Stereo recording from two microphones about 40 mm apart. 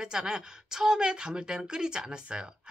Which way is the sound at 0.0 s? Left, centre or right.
Centre.